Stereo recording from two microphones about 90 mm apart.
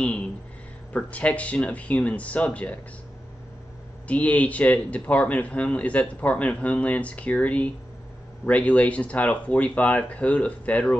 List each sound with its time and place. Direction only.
0.0 s a sound: 10° left (ahead or behind)
0.9 s a man's voice: 15° left (ahead or behind)
4.1 s a man's voice: 15° left (ahead or behind)